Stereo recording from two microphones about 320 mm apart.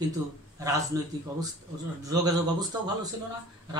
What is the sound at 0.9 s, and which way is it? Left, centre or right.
Speech, centre.